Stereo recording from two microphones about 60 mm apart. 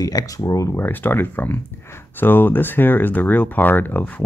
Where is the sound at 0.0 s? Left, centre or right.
Left.